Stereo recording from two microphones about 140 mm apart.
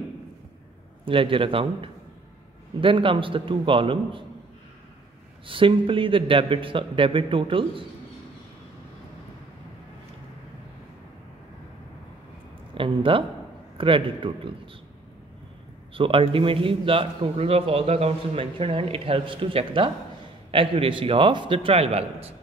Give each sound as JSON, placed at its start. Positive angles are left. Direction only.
{"t": 1.0, "sound": "a man's voice", "side_deg": -40}
{"t": 5.5, "sound": "a man's voice", "side_deg": -40}
{"t": 12.7, "sound": "a man's voice", "side_deg": -40}
{"t": 15.9, "sound": "a man's voice", "side_deg": -40}